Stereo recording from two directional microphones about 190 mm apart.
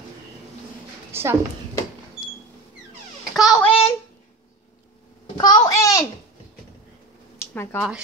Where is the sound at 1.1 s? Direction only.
15° right (ahead or behind).